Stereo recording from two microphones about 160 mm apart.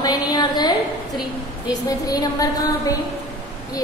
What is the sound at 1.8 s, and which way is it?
A woman's voice, 25° left (ahead or behind).